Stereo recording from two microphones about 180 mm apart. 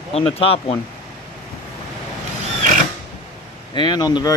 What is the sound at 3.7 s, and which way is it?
Speech, 25° left (ahead or behind).